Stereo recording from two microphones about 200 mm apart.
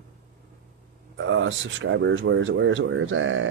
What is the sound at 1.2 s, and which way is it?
Speech, 75° right (ahead or behind).